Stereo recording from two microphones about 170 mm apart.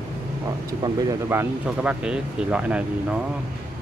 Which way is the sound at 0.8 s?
25° right (ahead or behind).